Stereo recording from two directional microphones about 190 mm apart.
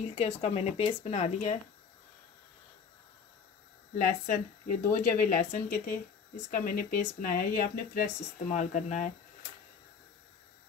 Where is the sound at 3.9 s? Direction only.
45° left (ahead or behind).